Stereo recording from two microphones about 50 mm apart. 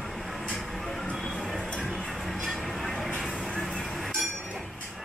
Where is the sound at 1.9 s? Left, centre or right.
Centre.